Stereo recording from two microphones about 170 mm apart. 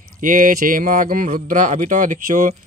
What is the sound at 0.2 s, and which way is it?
A man's voice, 50° right (ahead or behind).